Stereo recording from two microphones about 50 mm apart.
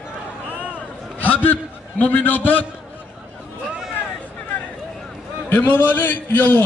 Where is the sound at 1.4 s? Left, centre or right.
Left.